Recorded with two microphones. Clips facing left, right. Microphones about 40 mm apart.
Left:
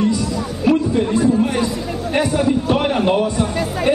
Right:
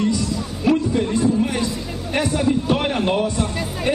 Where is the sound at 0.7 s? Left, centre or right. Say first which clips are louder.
Left 2 dB; centre.